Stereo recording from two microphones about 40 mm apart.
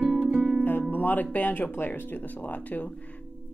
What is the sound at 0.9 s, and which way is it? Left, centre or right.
Speech, left.